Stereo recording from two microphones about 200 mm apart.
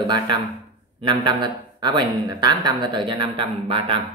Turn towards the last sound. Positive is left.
turn(degrees=-25)  # may be behind; listen again after turning